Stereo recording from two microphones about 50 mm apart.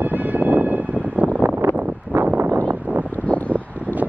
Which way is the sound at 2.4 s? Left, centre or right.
Right.